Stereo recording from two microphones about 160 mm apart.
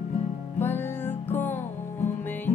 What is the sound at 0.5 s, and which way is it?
Music, 15° left (ahead or behind).